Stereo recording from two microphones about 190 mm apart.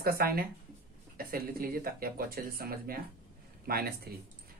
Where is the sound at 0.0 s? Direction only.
50° right (ahead or behind).